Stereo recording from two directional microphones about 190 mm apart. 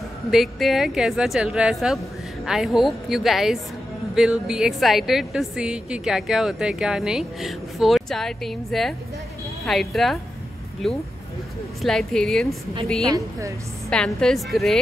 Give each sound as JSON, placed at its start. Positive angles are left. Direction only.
{"t": 0.3, "sound": "a woman's voice", "side_deg": 0}
{"t": 13.0, "sound": "a woman's voice", "side_deg": -20}
{"t": 13.8, "sound": "a woman's voice", "side_deg": 5}